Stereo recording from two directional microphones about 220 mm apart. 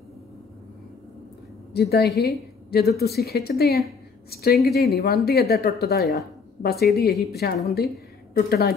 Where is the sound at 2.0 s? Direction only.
Centre (ahead or behind).